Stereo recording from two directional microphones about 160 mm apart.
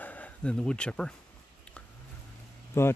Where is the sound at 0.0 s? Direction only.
10° left (ahead or behind).